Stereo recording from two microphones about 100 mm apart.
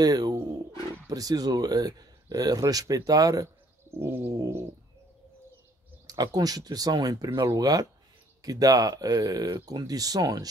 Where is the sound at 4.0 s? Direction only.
20° right (ahead or behind).